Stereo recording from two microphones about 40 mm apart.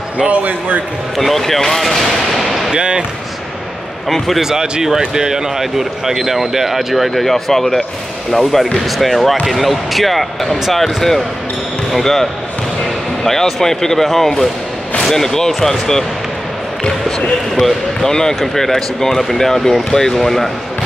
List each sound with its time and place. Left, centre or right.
0.3 s speech: right
1.1 s speech: centre
2.7 s speech: right
4.4 s speech: centre
17.6 s speech: centre